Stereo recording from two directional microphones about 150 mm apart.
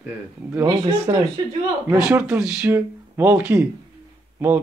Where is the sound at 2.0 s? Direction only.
10° right (ahead or behind).